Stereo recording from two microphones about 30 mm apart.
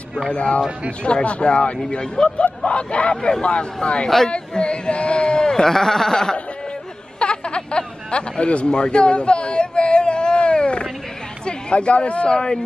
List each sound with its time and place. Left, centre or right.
0.3 s speech: left
3.2 s speech: left
3.4 s speech: left
5.7 s speech: centre
7.2 s a sound: left
11.4 s speech: left
12.3 s speech: left